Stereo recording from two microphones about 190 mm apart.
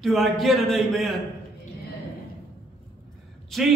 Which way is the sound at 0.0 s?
Centre (ahead or behind).